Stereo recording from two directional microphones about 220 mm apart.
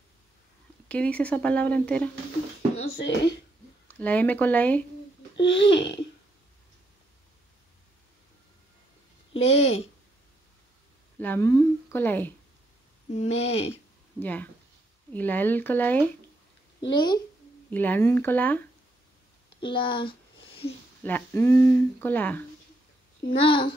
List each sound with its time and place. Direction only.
0.8 s speech: 5° left (ahead or behind)
3.0 s speech: 55° left (ahead or behind)
3.8 s speech: 5° left (ahead or behind)
5.4 s babbling: 55° left (ahead or behind)
9.4 s speech: 30° left (ahead or behind)
11.1 s speech: 10° left (ahead or behind)
13.1 s speech: 30° left (ahead or behind)
14.2 s speech: 10° left (ahead or behind)
16.9 s speech: 20° left (ahead or behind)
17.6 s speech: 10° left (ahead or behind)
19.6 s a sound: 20° left (ahead or behind)
21.0 s speech: 10° left (ahead or behind)
23.4 s speech: 20° left (ahead or behind)